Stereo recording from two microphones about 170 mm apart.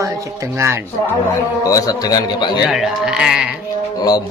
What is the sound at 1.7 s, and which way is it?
Speech, 20° left (ahead or behind).